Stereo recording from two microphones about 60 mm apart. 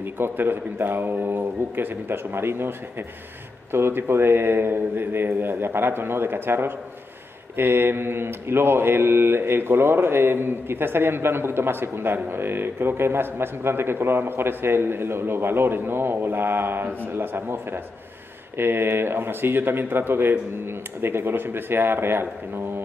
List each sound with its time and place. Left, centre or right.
0.0 s speech: right